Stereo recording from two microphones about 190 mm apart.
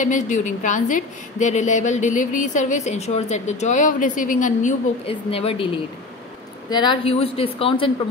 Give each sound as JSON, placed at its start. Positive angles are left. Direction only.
{"t": 0.0, "sound": "a woman's voice", "side_deg": 40}
{"t": 6.7, "sound": "speech", "side_deg": 25}